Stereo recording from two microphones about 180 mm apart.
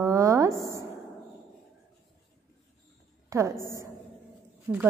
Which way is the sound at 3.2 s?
15° right (ahead or behind).